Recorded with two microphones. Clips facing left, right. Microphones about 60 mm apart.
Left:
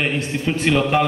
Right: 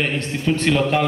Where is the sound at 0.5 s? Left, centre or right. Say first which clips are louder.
Left 1 dB; centre.